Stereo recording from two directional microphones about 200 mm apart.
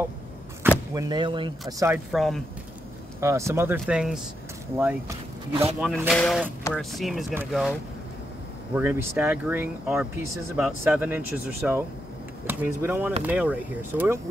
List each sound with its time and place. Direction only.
0.7 s speech: 20° right (ahead or behind)
2.1 s speech: centre (ahead or behind)
3.2 s speech: 15° right (ahead or behind)
5.5 s speech: 30° right (ahead or behind)
6.0 s speech: centre (ahead or behind)
8.7 s speech: 10° right (ahead or behind)